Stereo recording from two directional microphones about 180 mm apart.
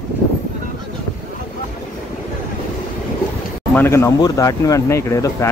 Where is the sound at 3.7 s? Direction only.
15° left (ahead or behind).